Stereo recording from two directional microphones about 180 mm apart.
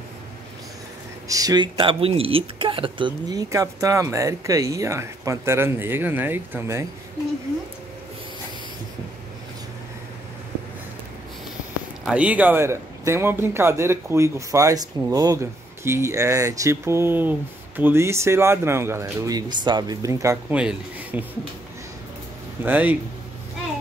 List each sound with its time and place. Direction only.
1.3 s a man's voice: 20° right (ahead or behind)
12.0 s a man's voice: 5° right (ahead or behind)
22.6 s a man's voice: 10° right (ahead or behind)